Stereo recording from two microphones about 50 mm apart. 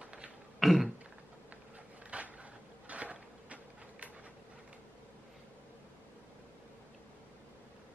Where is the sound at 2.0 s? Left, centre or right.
Right.